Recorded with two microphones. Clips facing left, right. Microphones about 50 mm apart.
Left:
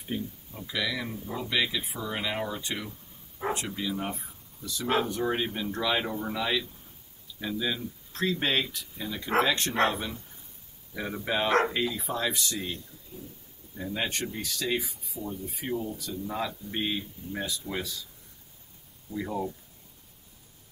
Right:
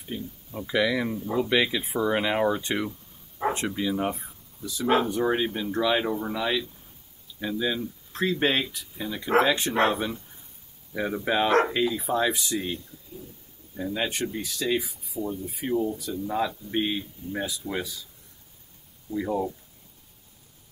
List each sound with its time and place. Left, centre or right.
0.1 s speech: centre
0.5 s speech: right; by 12.7 s centre
13.9 s speech: centre
19.1 s speech: centre